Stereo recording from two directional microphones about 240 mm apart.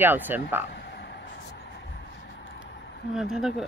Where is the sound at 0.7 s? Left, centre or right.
Left.